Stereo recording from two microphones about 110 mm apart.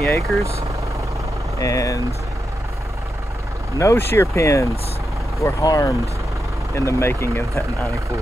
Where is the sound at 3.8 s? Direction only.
25° left (ahead or behind).